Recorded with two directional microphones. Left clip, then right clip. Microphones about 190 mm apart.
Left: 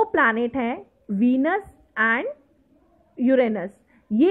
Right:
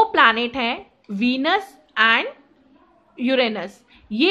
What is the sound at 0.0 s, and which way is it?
A woman's voice, 10° left (ahead or behind).